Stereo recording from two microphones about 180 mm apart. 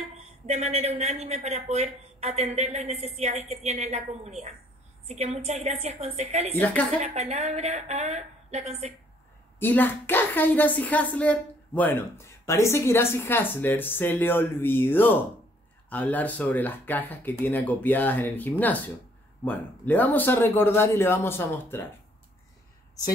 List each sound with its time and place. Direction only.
0.2 s speech: 35° right (ahead or behind)
6.5 s speech: 10° left (ahead or behind)
7.0 s speech: 35° right (ahead or behind)
9.6 s speech: 10° left (ahead or behind)